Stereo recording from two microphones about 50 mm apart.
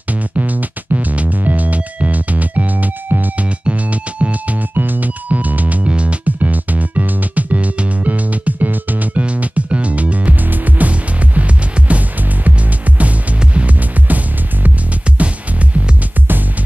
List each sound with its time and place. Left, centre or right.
0.1 s music: right
15.1 s music: right